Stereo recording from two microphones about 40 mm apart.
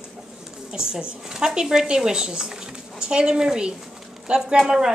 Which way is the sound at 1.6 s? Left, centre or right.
Centre.